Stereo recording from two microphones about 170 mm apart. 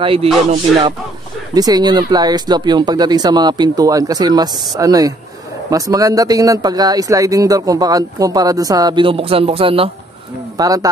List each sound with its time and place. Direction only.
0.0 s music: 30° right (ahead or behind)
1.5 s speech: 20° right (ahead or behind)
10.6 s speech: 20° right (ahead or behind)